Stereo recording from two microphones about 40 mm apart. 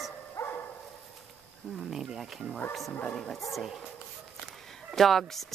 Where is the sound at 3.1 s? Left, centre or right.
Centre.